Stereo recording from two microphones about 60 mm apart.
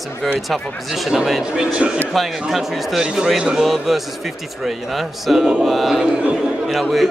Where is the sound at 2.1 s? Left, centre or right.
Centre.